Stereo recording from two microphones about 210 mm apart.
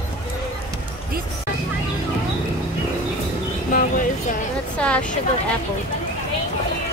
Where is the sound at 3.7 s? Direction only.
40° left (ahead or behind).